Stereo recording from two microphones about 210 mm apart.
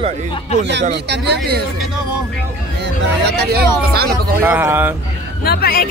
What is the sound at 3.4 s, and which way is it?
Speech, 50° right (ahead or behind).